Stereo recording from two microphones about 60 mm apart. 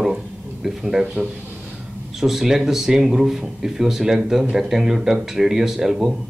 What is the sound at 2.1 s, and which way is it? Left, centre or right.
Speech, centre.